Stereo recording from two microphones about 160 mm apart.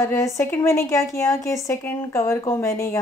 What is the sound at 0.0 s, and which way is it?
A woman's voice, 20° left (ahead or behind).